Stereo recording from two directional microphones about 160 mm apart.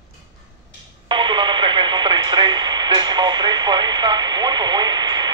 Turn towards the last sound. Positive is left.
turn(degrees=-25)  # may be behind; listen again after turning